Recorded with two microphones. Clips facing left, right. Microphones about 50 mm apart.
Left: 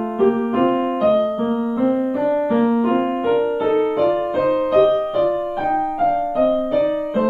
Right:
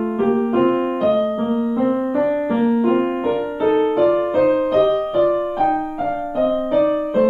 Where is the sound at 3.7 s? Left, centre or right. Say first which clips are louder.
Right 5 dB; centre.